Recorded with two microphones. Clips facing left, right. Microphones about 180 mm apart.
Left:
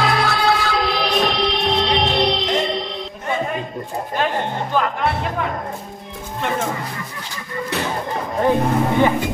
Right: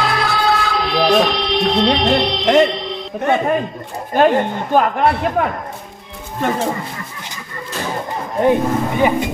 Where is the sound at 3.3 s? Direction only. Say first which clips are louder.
Right 6 dB; 70° right (ahead or behind).